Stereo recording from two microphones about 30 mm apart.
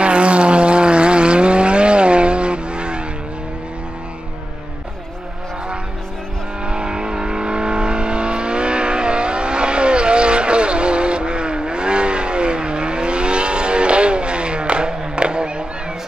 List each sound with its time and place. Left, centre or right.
0.0 s vehicle: right
6.6 s vehicle: right